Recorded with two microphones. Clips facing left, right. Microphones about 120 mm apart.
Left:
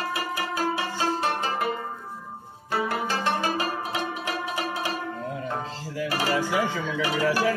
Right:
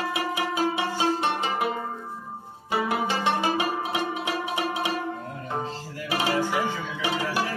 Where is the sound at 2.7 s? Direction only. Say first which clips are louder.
Right 1 dB; 15° right (ahead or behind).